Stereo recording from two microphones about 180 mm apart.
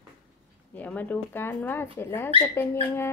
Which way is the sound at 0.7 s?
10° left (ahead or behind).